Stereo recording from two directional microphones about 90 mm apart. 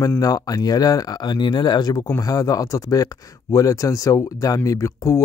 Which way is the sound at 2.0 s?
40° left (ahead or behind).